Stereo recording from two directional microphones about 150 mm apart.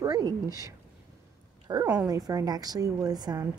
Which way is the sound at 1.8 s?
10° right (ahead or behind).